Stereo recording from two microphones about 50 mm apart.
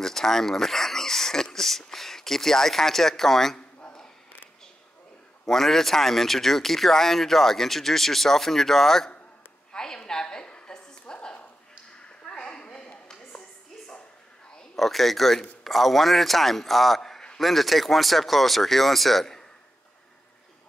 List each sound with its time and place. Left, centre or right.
0.0 s speech: centre
5.5 s speech: centre
9.7 s a sound: centre
14.8 s speech: centre